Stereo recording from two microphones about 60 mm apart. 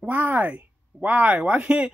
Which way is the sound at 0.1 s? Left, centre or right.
Right.